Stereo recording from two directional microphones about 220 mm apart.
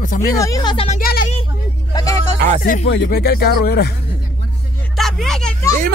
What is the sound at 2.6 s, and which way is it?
Speech, 45° left (ahead or behind).